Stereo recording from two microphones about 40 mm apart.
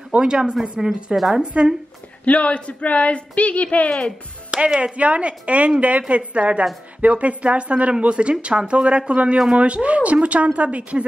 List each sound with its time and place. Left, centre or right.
0.2 s a man's voice: right
0.6 s a woman's voice: centre
1.4 s a man's voice: right
2.2 s speech: left
4.5 s speech: right
4.9 s a man's voice: right